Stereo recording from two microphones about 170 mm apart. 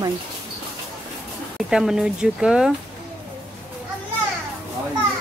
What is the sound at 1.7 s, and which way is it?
Speech, 5° right (ahead or behind).